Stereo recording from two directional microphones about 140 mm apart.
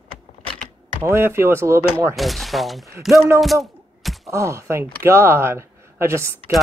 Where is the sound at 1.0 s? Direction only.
15° right (ahead or behind).